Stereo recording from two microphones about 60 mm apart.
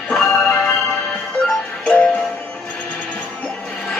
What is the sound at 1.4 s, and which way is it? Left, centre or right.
Music, centre.